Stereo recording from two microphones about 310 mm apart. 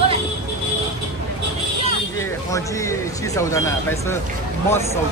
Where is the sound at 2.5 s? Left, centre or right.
Centre.